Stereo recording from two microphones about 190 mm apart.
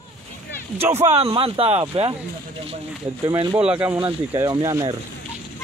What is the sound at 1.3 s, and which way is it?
Speech, 30° right (ahead or behind).